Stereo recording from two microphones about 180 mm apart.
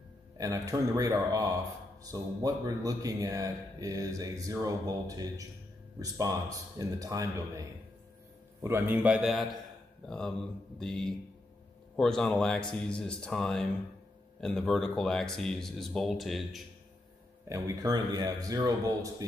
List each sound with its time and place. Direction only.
0.4 s a man's voice: 20° right (ahead or behind); by 16.6 s centre (ahead or behind)
17.5 s speech: 20° right (ahead or behind)